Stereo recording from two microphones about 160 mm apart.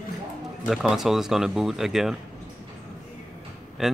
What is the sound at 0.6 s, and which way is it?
Speech, centre (ahead or behind).